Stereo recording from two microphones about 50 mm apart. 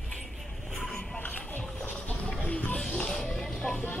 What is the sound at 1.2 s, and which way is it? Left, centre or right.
Music, left.